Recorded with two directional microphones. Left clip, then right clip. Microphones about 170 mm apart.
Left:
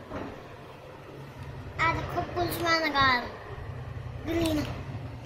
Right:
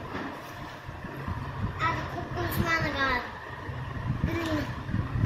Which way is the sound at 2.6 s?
35° left (ahead or behind).